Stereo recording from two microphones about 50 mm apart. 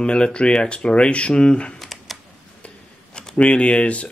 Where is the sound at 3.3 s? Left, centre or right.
Left.